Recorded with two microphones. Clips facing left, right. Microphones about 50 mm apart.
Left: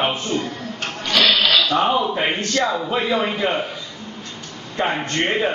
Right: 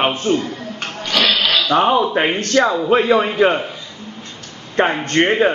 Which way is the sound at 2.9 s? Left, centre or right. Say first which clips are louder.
Right 6 dB; right.